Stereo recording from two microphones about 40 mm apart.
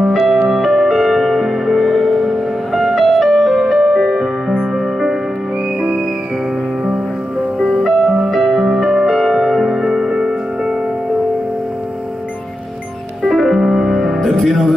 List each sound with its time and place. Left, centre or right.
0.3 s music: centre
5.8 s music: centre
7.5 s music: centre
10.1 s music: right
13.2 s music: centre